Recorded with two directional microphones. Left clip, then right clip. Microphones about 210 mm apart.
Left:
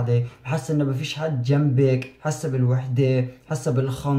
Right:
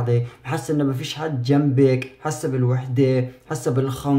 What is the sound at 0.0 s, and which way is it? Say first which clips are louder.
Speech: right 2 dB; 45° right (ahead or behind).